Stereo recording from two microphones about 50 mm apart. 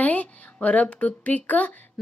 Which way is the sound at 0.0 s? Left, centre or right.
Left.